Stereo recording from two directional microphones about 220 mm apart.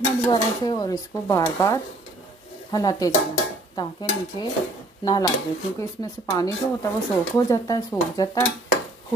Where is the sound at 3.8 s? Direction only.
20° left (ahead or behind).